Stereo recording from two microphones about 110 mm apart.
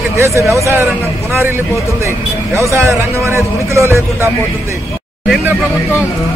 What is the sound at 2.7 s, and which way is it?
Speech, 25° right (ahead or behind).